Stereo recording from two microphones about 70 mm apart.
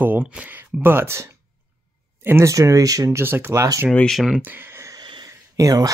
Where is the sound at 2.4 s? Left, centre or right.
Right.